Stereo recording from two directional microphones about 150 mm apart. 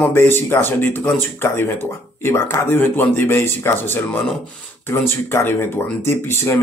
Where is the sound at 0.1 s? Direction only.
15° left (ahead or behind).